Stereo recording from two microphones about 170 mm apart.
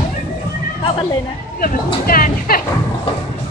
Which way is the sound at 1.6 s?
55° left (ahead or behind).